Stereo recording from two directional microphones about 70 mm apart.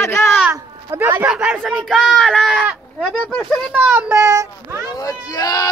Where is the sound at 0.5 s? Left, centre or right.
Right.